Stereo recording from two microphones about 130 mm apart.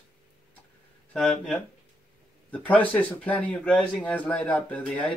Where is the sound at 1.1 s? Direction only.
Centre (ahead or behind).